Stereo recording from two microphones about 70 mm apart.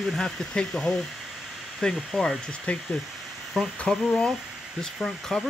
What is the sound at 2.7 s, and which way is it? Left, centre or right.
Speech, centre.